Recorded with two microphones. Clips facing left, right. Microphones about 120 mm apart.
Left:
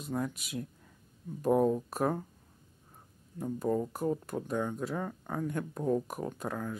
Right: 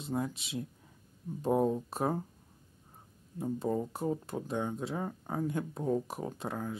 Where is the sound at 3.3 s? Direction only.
25° right (ahead or behind).